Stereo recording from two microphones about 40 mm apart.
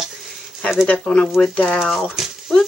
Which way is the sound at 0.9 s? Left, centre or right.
Left.